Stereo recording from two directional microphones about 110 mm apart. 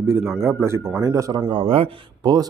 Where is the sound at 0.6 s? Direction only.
25° right (ahead or behind).